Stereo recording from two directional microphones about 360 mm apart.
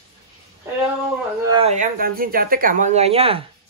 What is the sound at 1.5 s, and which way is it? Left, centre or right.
Speech, centre.